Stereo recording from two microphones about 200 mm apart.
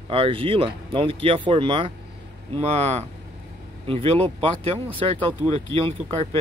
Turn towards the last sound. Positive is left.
turn(degrees=-30)  # may be behind; listen again after turning